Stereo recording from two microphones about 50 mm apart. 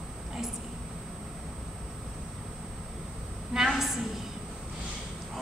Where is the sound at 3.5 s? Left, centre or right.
Centre.